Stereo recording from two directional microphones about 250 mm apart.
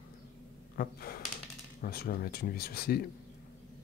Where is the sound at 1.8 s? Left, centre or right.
Left.